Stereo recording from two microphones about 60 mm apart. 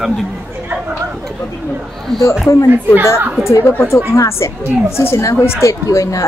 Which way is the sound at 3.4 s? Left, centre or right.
Left.